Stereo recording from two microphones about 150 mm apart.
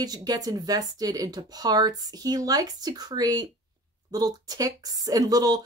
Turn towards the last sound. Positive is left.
turn(degrees=-25)  # may be behind; listen again after turning